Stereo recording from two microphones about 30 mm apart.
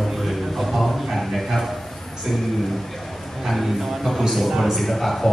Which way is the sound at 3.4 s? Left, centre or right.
Centre.